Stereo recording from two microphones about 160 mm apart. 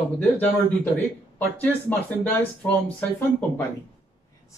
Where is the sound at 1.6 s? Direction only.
10° left (ahead or behind).